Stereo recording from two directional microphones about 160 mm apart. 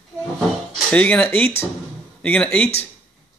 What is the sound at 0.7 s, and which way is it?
Speech, 10° left (ahead or behind).